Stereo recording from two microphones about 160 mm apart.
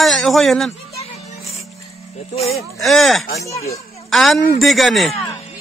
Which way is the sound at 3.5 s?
40° left (ahead or behind).